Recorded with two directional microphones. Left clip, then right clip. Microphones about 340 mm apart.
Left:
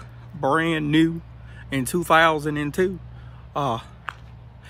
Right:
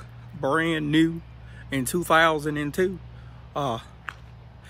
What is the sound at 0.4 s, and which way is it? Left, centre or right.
Speech, centre.